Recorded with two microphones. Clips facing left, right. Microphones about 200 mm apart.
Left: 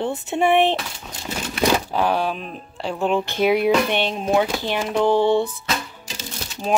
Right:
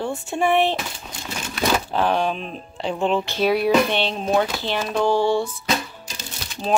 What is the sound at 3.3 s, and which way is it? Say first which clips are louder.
Speech: even; 20° left (ahead or behind).